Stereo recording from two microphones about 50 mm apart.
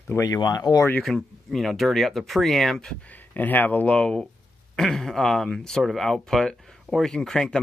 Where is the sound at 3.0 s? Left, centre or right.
Left.